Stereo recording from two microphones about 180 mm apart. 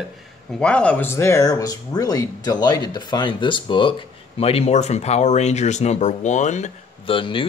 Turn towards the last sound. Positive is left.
turn(degrees=30)  # may be behind; listen again after turning